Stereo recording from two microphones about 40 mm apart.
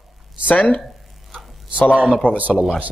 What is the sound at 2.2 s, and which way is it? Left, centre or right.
Speech, left.